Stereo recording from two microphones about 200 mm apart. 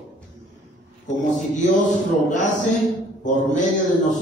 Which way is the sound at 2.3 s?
40° left (ahead or behind).